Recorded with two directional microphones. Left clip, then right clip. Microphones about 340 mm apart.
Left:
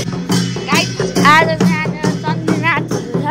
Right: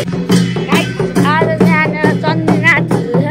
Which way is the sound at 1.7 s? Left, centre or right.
Centre.